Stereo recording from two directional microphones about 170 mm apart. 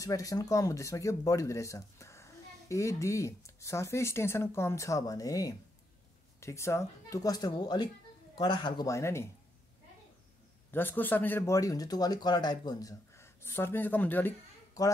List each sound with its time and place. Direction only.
0.0 s speech: 20° left (ahead or behind)
10.7 s speech: 10° left (ahead or behind)